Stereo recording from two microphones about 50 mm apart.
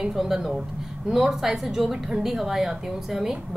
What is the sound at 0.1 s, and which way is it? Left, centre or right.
A woman's voice, centre.